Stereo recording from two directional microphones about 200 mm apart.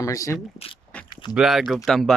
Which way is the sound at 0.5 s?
30° left (ahead or behind).